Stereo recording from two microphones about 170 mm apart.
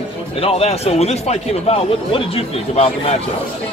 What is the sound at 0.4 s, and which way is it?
Speech, 35° left (ahead or behind).